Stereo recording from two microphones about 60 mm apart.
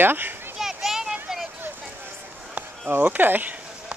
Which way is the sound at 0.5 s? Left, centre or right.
Centre.